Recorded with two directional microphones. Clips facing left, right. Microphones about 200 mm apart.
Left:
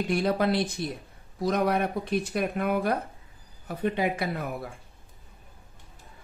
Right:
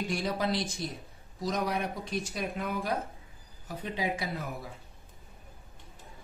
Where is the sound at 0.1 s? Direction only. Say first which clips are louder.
Left 7 dB; 60° left (ahead or behind).